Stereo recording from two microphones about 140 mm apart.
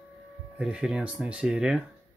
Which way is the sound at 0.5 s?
5° right (ahead or behind).